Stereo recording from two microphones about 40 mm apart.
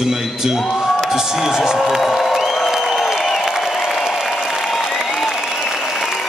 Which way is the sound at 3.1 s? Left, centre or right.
Centre.